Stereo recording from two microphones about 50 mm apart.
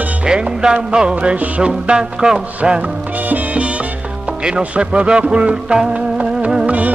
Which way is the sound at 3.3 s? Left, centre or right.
Right.